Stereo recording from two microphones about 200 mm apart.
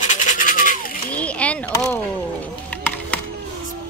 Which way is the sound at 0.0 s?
40° left (ahead or behind).